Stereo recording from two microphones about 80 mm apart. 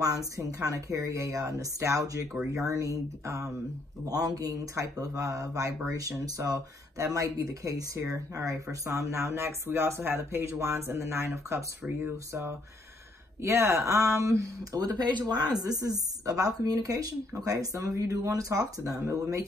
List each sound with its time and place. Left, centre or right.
0.0 s speech: right
11.8 s speech: centre
12.3 s speech: right